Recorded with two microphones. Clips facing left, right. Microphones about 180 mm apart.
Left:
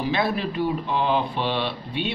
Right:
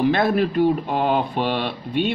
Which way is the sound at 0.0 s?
50° right (ahead or behind).